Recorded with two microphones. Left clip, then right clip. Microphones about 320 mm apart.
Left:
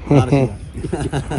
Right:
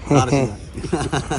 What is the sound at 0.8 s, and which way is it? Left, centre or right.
Speech, centre.